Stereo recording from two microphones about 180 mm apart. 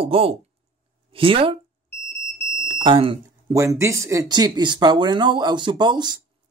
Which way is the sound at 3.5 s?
15° right (ahead or behind).